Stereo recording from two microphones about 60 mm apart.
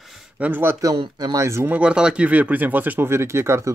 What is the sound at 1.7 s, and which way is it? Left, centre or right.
Speech, centre.